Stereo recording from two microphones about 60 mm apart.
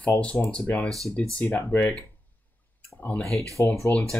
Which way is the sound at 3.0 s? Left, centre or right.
Left.